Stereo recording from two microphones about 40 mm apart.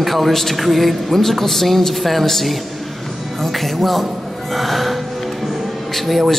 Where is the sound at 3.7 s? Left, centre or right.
Centre.